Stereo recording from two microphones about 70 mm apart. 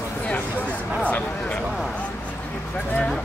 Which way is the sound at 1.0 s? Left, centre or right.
Centre.